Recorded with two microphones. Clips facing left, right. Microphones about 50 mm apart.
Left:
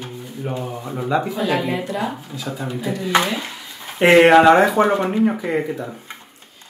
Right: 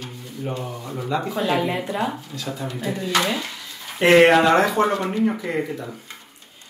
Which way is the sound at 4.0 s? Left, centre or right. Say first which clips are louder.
Left 3 dB; centre.